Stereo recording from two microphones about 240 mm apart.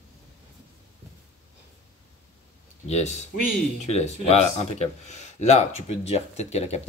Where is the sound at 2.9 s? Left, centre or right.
Left.